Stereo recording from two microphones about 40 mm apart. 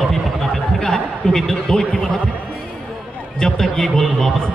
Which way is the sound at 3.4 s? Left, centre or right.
Centre.